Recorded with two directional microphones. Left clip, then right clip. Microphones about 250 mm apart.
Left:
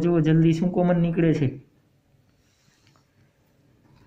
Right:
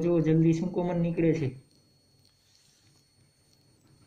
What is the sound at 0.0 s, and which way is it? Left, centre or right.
Speech, left.